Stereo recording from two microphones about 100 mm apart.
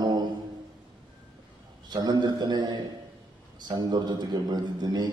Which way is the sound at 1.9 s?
45° right (ahead or behind).